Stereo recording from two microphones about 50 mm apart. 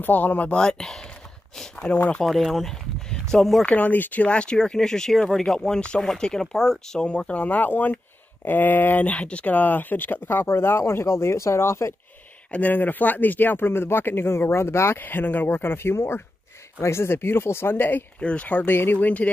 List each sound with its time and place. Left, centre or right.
0.0 s speech: left
0.6 s speech: centre
2.0 s speech: left
2.2 s speech: centre
3.6 s speech: left; by 5.8 s centre
5.8 s speech: left
7.1 s speech: left
12.4 s speech: left
15.0 s speech: left
18.2 s speech: left
18.7 s speech: left
18.9 s speech: left